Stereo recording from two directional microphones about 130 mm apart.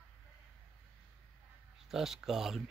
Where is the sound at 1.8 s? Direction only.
5° right (ahead or behind).